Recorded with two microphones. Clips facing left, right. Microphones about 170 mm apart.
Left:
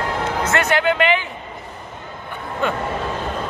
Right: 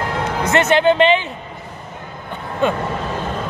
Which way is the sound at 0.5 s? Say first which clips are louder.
Right 6 dB; 25° right (ahead or behind).